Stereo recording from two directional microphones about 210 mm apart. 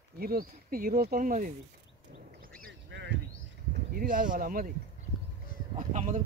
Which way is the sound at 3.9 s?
40° right (ahead or behind).